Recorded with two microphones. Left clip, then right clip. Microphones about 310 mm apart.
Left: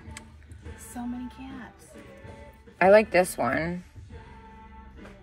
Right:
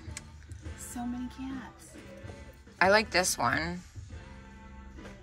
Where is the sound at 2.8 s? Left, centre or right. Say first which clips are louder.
Left 6 dB; centre.